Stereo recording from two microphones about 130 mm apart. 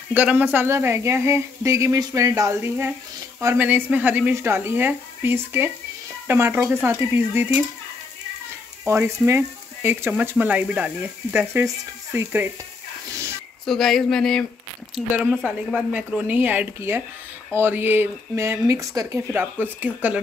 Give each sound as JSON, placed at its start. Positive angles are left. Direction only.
{"t": 0.1, "sound": "speech", "side_deg": -10}
{"t": 8.8, "sound": "speech", "side_deg": -20}
{"t": 13.7, "sound": "speech", "side_deg": 0}